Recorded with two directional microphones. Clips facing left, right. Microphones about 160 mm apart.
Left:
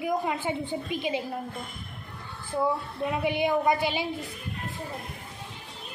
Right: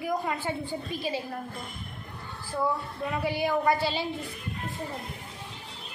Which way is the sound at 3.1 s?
20° left (ahead or behind).